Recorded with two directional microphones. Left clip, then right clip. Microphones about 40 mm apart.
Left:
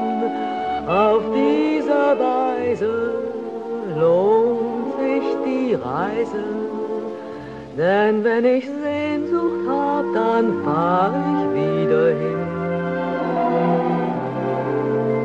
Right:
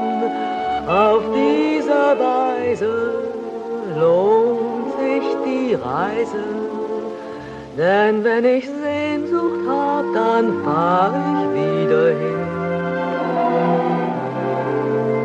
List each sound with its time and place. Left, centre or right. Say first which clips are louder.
0.8 s music: right 2 dB; left
7.8 s a sound: right 2 dB; centre
9.1 s music: right 1 dB; left
13.3 s music: right 1 dB; centre
14.7 s music: right 1 dB; centre